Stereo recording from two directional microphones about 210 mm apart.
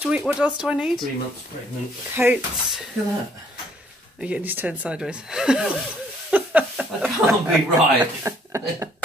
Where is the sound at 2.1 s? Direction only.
10° right (ahead or behind).